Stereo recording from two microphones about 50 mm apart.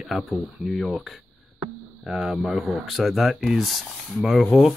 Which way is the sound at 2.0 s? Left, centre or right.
Centre.